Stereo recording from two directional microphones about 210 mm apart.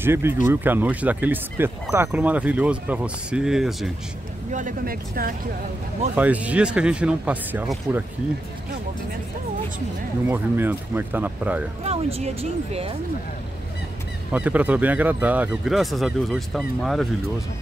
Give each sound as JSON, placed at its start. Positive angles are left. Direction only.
{"t": 0.0, "sound": "speech", "side_deg": -10}
{"t": 4.5, "sound": "speech", "side_deg": -40}
{"t": 6.1, "sound": "speech", "side_deg": -5}
{"t": 10.2, "sound": "speech", "side_deg": -10}
{"t": 11.8, "sound": "speech", "side_deg": -30}
{"t": 14.3, "sound": "speech", "side_deg": -5}